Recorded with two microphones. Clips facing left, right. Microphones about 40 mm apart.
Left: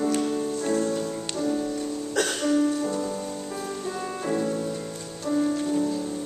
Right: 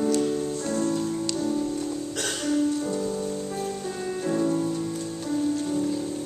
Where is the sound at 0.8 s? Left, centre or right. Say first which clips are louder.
Right 1 dB; centre.